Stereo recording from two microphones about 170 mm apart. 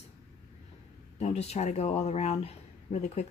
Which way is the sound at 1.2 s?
40° left (ahead or behind).